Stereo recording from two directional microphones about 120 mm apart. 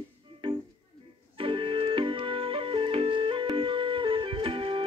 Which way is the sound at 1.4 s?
45° right (ahead or behind).